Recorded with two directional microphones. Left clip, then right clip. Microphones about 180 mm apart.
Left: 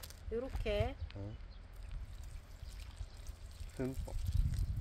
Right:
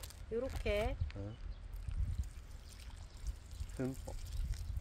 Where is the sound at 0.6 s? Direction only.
20° right (ahead or behind).